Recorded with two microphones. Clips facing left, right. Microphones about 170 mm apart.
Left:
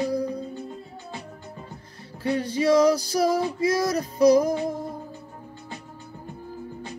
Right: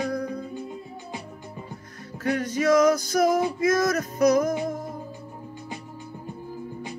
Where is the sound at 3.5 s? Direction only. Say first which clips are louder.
Right 1 dB; 30° left (ahead or behind).